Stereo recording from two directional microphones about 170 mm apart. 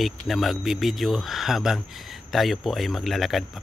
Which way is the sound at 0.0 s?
Centre (ahead or behind).